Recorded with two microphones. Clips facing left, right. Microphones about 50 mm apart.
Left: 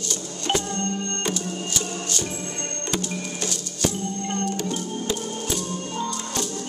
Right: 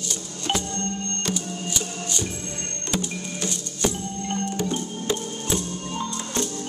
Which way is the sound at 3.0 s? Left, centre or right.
Right.